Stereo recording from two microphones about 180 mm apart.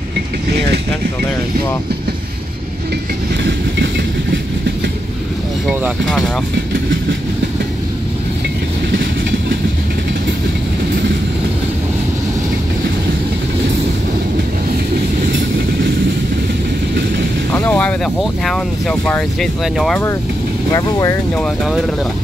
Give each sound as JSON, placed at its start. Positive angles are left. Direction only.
{"t": 3.4, "sound": "train", "side_deg": -75}
{"t": 5.7, "sound": "speech", "side_deg": -5}
{"t": 17.5, "sound": "speech", "side_deg": 10}
{"t": 20.7, "sound": "speech", "side_deg": 15}
{"t": 21.4, "sound": "speech", "side_deg": 5}